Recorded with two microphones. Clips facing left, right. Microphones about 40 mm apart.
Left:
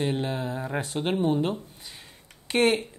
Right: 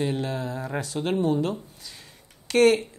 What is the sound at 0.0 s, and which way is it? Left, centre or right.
Speech, left.